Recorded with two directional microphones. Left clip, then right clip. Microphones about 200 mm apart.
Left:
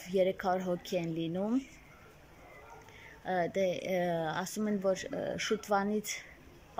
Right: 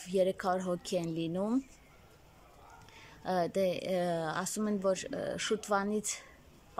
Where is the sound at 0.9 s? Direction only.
15° right (ahead or behind).